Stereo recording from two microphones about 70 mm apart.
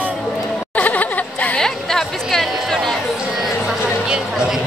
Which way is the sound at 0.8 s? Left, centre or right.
Left.